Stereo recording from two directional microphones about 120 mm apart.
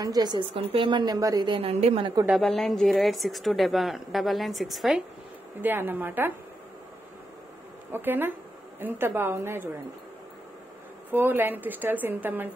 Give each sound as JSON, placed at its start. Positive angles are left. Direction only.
{"t": 0.0, "sound": "a woman's voice", "side_deg": -35}
{"t": 1.6, "sound": "a woman's voice", "side_deg": -60}
{"t": 2.2, "sound": "a woman's voice", "side_deg": 0}
{"t": 5.6, "sound": "a woman's voice", "side_deg": -15}
{"t": 7.9, "sound": "a woman's voice", "side_deg": -15}
{"t": 11.1, "sound": "a woman's voice", "side_deg": -15}